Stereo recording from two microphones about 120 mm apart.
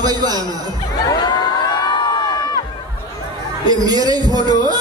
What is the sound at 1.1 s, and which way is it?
Crowd, 35° left (ahead or behind).